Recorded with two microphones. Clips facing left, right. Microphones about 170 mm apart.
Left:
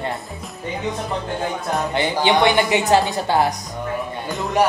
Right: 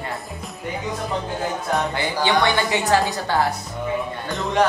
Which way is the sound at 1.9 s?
20° left (ahead or behind).